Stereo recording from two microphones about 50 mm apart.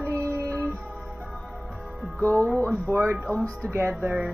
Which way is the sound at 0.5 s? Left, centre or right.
Left.